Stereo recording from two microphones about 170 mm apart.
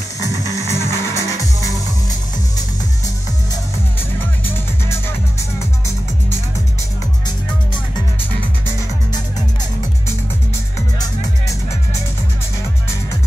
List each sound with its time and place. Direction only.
0.2 s music: 20° left (ahead or behind)